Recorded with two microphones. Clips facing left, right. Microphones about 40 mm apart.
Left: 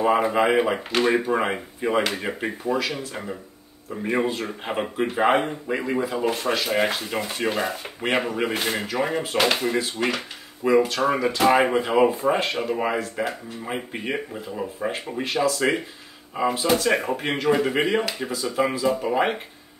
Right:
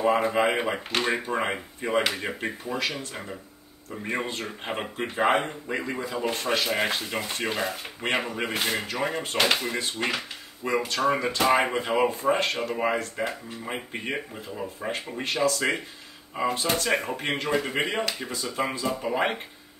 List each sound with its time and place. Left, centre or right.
0.0 s speech: centre
10.6 s speech: centre